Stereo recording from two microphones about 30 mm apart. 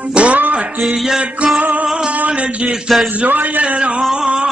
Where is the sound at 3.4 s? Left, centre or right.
Right.